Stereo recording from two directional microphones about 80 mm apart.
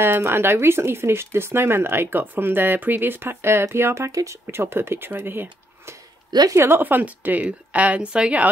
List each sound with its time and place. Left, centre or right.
0.0 s speech: right
4.5 s a woman's voice: right; by 8.5 s centre